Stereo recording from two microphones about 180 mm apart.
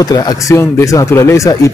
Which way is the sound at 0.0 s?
20° left (ahead or behind).